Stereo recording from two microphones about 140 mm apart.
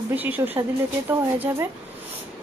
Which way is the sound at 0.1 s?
10° right (ahead or behind).